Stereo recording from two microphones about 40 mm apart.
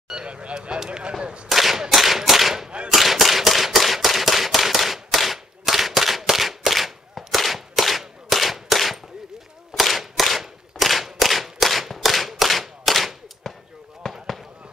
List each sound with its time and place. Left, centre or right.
0.1 s speech: right
1.5 s whip: centre
2.9 s a sound: centre
8.3 s gunshot: centre
9.7 s whip: centre
10.8 s clapping: centre
14.0 s fireworks: centre